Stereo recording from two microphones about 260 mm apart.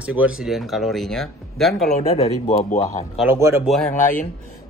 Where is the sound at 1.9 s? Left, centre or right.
Left.